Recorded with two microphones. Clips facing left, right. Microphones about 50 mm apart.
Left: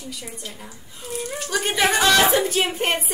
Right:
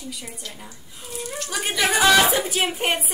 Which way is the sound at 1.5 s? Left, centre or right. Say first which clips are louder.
Left 2 dB; centre.